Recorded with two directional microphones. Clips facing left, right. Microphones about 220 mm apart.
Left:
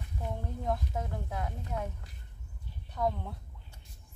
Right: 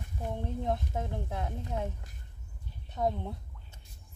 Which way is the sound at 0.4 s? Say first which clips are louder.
Right 2 dB; 25° right (ahead or behind).